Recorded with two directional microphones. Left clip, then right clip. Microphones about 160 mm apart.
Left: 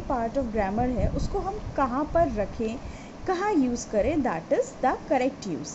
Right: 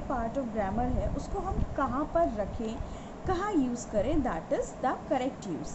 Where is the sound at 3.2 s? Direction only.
45° left (ahead or behind).